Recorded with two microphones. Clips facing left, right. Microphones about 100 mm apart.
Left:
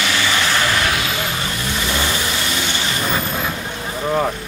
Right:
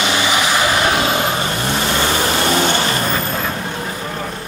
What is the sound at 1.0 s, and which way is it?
Vehicle, 40° right (ahead or behind).